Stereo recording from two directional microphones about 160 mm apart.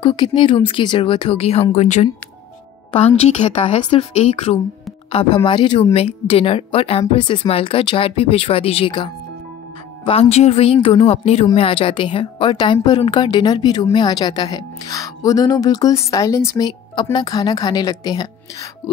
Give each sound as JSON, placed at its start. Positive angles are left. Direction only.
{"t": 0.0, "sound": "speech", "side_deg": 30}
{"t": 3.2, "sound": "speech", "side_deg": 45}
{"t": 3.6, "sound": "speech", "side_deg": 30}
{"t": 5.1, "sound": "speech", "side_deg": 30}